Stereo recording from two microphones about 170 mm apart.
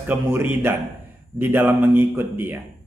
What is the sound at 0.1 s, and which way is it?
Speech, 10° right (ahead or behind).